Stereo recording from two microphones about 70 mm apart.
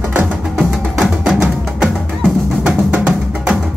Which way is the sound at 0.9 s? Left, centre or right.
Centre.